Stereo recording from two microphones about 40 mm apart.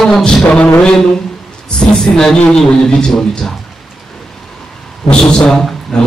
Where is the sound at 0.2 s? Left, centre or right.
Left.